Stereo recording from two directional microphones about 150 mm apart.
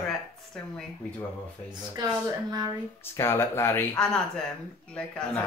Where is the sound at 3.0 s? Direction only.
15° left (ahead or behind).